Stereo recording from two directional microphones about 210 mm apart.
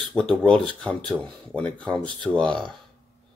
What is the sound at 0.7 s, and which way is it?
Speech, 5° left (ahead or behind).